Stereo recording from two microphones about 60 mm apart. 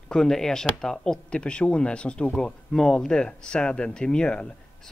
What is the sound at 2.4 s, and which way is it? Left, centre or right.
Speech, centre.